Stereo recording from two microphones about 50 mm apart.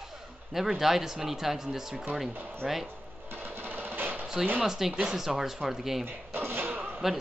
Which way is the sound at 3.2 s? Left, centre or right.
Right.